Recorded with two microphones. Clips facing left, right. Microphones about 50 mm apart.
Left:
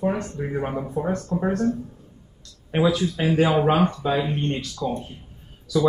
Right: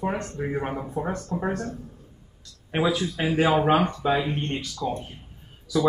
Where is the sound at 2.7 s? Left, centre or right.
Centre.